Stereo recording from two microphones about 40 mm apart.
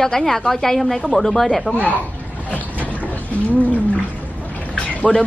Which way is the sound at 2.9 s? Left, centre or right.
Left.